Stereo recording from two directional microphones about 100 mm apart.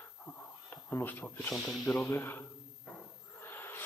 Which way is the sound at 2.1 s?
20° left (ahead or behind).